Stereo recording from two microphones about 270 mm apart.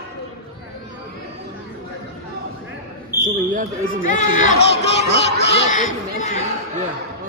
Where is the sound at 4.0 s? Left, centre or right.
Left.